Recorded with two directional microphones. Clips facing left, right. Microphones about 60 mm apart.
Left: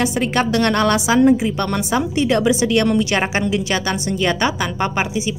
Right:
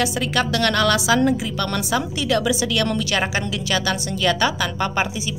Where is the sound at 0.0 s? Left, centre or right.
Left.